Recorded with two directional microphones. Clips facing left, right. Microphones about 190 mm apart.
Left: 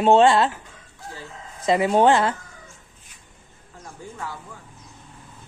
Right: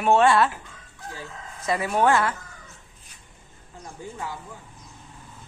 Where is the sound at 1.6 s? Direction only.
25° left (ahead or behind).